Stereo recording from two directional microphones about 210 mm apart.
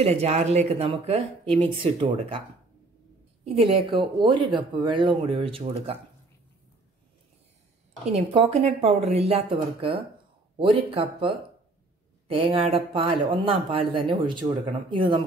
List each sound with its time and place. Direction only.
0.0 s speech: 30° right (ahead or behind)
3.4 s speech: 30° right (ahead or behind)
8.1 s speech: 30° right (ahead or behind)